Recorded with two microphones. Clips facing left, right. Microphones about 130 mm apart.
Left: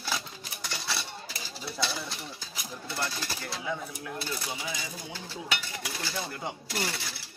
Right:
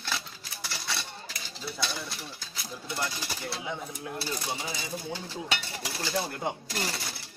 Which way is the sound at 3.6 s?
25° right (ahead or behind).